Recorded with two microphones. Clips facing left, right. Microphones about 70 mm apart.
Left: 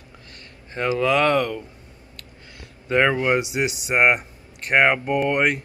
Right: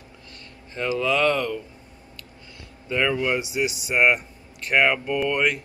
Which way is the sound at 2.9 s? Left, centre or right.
Left.